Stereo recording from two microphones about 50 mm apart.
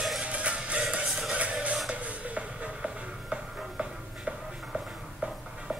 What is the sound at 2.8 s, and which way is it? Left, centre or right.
Music, centre.